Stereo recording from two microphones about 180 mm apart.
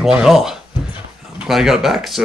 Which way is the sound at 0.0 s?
Centre (ahead or behind).